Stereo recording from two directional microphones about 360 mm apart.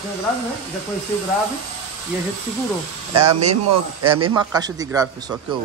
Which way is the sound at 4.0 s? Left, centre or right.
Centre.